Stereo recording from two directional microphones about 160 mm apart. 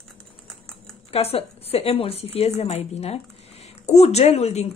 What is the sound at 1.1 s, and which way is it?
A woman's voice, 40° left (ahead or behind).